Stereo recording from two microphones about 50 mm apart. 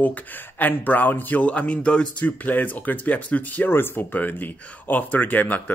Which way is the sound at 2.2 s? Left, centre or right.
Left.